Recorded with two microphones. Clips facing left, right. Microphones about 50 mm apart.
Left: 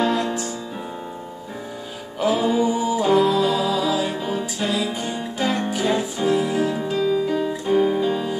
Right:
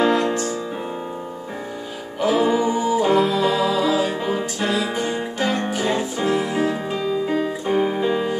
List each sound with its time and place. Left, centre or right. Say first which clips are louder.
0.0 s music: right 3 dB; right
2.1 s music: right 1 dB; centre
3.3 s music: right 1 dB; right
3.7 s music: right 2 dB; centre
5.7 s music: even; centre
6.1 s music: left 1 dB; right
7.7 s music: left 2 dB; centre
8.1 s music: right 2 dB; right